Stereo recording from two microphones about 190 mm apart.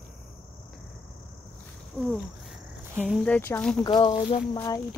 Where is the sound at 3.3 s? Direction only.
10° left (ahead or behind).